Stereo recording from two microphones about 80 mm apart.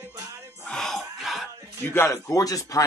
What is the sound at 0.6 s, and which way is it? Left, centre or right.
Screaming, centre.